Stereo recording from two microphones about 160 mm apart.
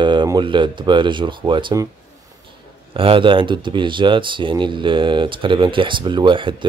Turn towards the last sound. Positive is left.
turn(degrees=-30)  # may be behind; listen again after turning